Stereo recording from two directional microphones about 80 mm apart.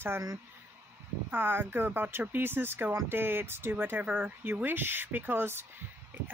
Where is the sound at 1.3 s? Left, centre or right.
Right.